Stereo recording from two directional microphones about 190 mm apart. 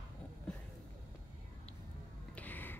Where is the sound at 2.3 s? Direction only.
10° left (ahead or behind).